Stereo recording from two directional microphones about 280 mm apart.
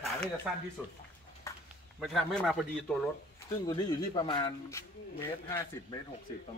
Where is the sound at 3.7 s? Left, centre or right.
Centre.